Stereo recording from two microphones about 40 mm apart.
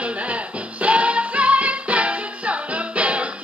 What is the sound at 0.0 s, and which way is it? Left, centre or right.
Music, right.